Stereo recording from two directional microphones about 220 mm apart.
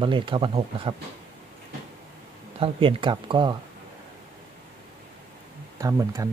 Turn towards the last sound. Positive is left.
turn(degrees=-15)  # may be behind; listen again after turning